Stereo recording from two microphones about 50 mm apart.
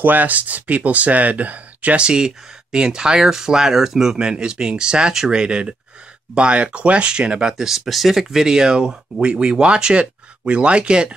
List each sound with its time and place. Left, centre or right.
0.0 s speech: right
2.0 s speech: centre
7.5 s speech: centre